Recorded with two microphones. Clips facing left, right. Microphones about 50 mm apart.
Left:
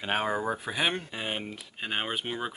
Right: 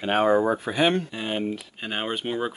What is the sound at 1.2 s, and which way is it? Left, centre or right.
Speech, centre.